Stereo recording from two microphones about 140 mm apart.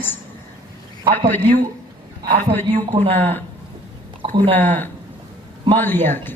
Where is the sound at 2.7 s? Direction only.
50° right (ahead or behind).